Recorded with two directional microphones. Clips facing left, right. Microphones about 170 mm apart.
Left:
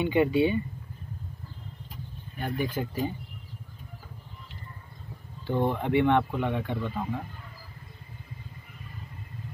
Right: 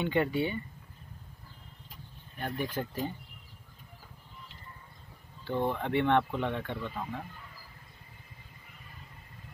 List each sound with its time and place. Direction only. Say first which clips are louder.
0.0 s speech: left 6 dB; 10° left (ahead or behind)
2.3 s speech: left 4 dB; 10° left (ahead or behind)
5.5 s speech: left 4 dB; 15° left (ahead or behind)